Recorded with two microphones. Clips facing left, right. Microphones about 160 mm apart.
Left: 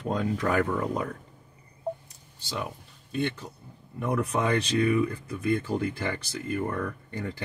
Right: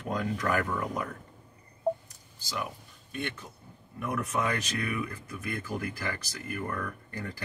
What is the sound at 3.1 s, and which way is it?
Speech, 30° left (ahead or behind).